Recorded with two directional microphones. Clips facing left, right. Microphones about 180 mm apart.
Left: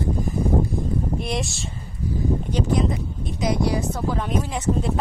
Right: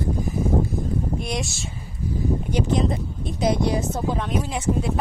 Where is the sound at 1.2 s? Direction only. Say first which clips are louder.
Left 1 dB; centre (ahead or behind).